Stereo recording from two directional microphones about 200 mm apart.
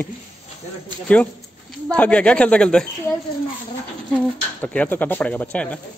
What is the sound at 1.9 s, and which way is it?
Speech, 5° left (ahead or behind).